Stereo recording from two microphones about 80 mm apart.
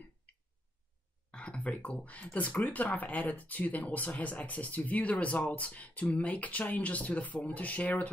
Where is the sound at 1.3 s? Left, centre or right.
Centre.